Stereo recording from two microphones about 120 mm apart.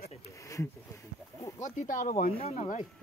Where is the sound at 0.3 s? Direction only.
25° left (ahead or behind).